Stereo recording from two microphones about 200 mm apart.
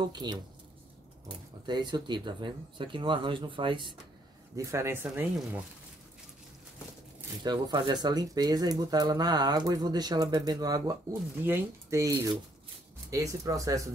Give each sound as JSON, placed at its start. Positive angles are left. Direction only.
{"t": 0.0, "sound": "speech", "side_deg": -20}
{"t": 1.7, "sound": "speech", "side_deg": -20}
{"t": 4.6, "sound": "speech", "side_deg": -15}
{"t": 7.4, "sound": "speech", "side_deg": -20}